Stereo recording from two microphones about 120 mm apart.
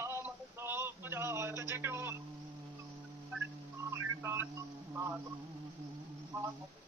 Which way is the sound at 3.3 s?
20° right (ahead or behind).